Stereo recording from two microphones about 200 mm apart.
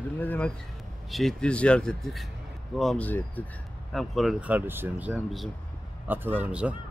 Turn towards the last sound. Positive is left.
turn(degrees=-5)  # may be behind; listen again after turning